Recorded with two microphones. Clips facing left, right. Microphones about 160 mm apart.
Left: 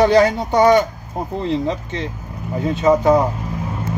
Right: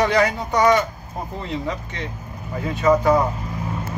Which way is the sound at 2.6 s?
25° left (ahead or behind).